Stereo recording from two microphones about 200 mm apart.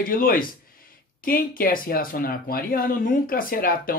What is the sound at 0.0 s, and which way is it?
Speech, 45° left (ahead or behind).